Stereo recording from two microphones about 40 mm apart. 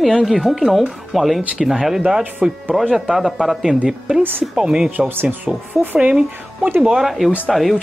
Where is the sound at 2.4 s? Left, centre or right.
Right.